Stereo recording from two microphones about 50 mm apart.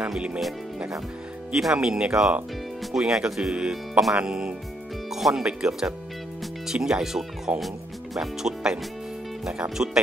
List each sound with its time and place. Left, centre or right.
1.5 s speech: centre
5.1 s speech: centre
7.6 s music: centre
9.5 s speech: centre